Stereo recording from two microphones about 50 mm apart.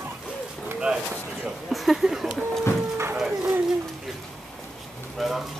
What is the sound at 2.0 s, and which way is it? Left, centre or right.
Speech, centre.